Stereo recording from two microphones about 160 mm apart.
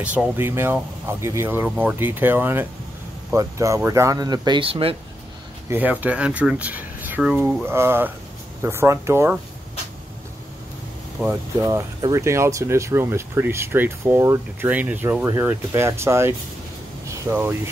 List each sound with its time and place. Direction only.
0.0 s speech: 10° right (ahead or behind); by 4.9 s 35° right (ahead or behind)
5.7 s speech: 10° right (ahead or behind)
11.2 s speech: 20° right (ahead or behind)